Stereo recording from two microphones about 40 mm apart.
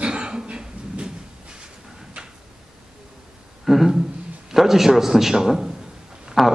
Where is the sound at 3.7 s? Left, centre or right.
Centre.